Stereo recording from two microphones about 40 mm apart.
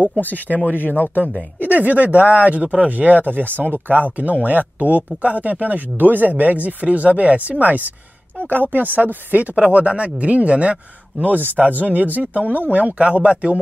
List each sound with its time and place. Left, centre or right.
0.7 s speech: right
9.6 s speech: right
11.2 s speech: right
12.9 s speech: right